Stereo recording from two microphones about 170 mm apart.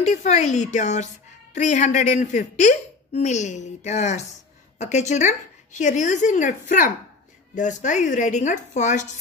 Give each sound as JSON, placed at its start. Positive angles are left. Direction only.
{"t": 0.0, "sound": "a woman's voice", "side_deg": 40}
{"t": 7.5, "sound": "a woman's voice", "side_deg": 45}